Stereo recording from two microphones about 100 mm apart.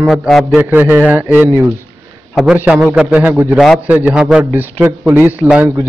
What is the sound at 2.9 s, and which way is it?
A man's voice, 10° right (ahead or behind).